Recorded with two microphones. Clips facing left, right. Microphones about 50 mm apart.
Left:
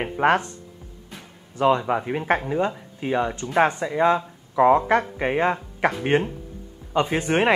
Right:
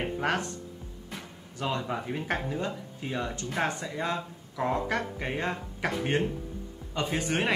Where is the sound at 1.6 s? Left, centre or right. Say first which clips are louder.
Left 11 dB; left.